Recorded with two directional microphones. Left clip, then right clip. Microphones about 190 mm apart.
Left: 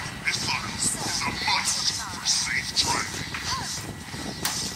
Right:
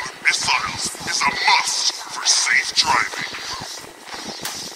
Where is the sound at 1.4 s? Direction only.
70° right (ahead or behind).